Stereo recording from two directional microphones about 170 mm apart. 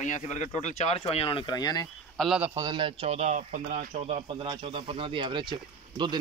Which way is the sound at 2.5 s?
25° right (ahead or behind).